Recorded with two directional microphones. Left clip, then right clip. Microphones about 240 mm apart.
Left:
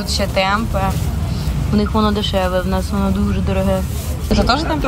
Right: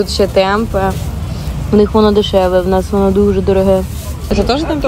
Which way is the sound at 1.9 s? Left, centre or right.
Left.